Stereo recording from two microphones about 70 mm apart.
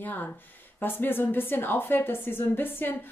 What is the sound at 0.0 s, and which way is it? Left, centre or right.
A woman's voice, left.